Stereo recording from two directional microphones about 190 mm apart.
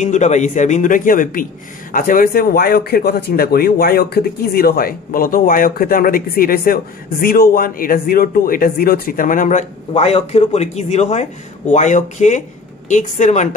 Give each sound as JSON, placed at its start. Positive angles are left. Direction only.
{"t": 0.0, "sound": "speech", "side_deg": 40}